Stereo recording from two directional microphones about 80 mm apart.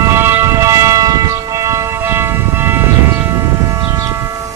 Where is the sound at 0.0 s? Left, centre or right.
Right.